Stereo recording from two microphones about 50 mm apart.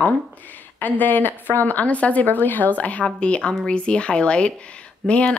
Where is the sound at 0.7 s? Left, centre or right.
Left.